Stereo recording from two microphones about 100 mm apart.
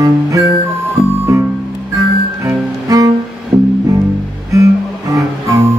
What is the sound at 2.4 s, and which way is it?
Music, 35° right (ahead or behind).